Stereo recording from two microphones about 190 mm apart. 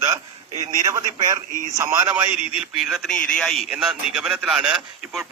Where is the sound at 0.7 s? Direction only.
20° right (ahead or behind).